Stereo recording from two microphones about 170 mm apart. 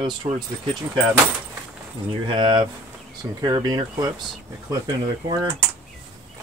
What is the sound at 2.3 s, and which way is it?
Speech, 30° right (ahead or behind).